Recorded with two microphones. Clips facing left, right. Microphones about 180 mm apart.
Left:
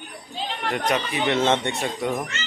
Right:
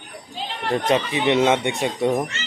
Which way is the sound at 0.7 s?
25° right (ahead or behind).